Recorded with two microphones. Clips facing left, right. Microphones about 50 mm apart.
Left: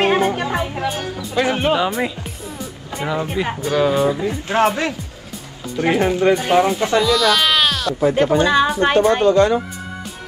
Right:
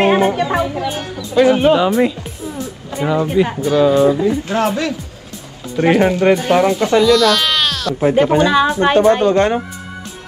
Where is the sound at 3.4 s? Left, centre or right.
Centre.